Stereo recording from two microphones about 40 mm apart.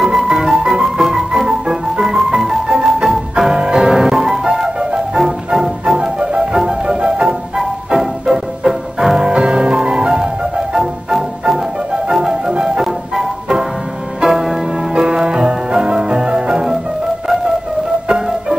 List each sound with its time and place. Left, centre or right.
0.0 s music: centre
18.0 s music: centre